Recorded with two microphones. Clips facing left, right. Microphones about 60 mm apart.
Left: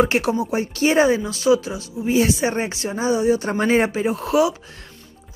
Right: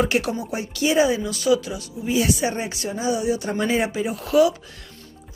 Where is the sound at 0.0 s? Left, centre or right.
Left.